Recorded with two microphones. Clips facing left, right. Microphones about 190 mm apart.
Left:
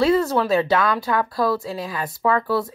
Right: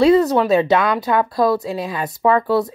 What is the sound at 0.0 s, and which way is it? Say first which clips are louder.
A woman's voice: right 5 dB; 20° right (ahead or behind).